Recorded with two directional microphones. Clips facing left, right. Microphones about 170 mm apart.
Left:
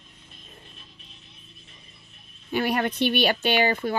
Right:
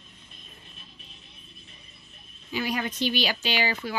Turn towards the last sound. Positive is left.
turn(degrees=55)  # may be behind; listen again after turning